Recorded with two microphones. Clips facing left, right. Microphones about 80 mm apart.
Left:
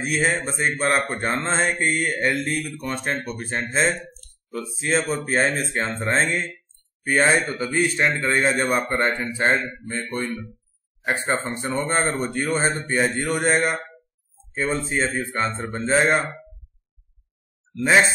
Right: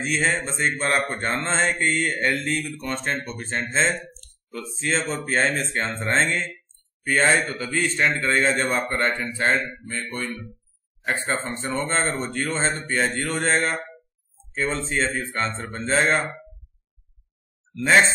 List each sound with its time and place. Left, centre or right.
0.0 s a man's voice: centre
4.7 s a man's voice: centre
17.8 s a man's voice: centre